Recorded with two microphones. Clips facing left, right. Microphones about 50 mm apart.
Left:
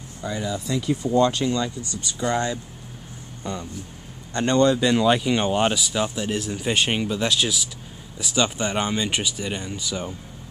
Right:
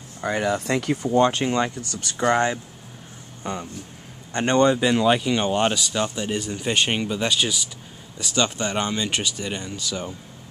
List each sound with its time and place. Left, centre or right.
0.2 s speech: right
1.0 s a man's voice: right
4.7 s speech: centre